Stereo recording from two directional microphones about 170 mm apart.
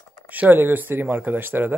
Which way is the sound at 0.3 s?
10° right (ahead or behind).